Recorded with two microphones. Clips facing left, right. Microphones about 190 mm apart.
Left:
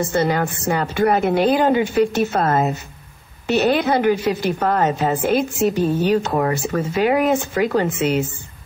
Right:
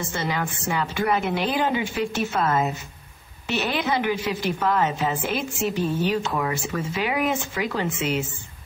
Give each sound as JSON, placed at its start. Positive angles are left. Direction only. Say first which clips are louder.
{"t": 0.0, "sound": "a woman's voice", "louder": "left 8 dB", "side_deg": 40}